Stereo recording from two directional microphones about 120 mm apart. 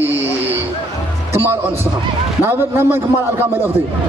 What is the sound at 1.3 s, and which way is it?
A man's voice, 20° right (ahead or behind).